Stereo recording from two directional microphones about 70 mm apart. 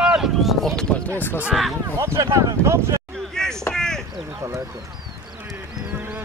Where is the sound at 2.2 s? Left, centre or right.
Right.